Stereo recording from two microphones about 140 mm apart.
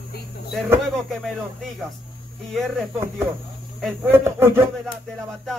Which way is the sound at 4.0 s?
15° right (ahead or behind).